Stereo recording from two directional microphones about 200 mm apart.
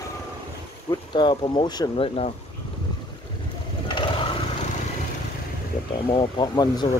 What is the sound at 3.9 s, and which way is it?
Vehicle, 25° left (ahead or behind).